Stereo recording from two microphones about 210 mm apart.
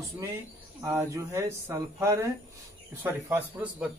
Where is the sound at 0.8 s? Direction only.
15° right (ahead or behind).